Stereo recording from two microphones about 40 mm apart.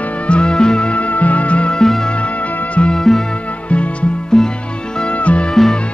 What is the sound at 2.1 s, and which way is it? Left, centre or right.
Music, left.